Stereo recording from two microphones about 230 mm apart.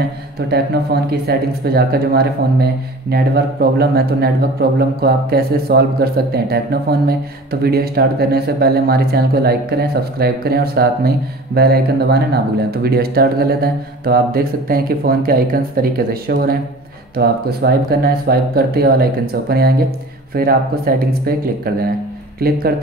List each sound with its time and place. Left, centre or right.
0.4 s speech: right